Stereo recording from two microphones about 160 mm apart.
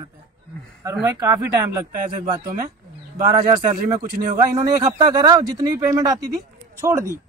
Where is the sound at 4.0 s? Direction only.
60° right (ahead or behind).